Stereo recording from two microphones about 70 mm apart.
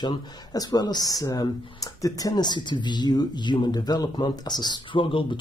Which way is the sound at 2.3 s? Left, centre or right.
Left.